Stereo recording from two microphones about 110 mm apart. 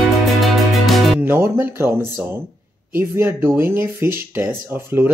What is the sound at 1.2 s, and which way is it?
Speech, 20° right (ahead or behind).